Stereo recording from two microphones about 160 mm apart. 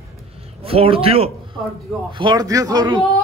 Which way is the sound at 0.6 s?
35° right (ahead or behind).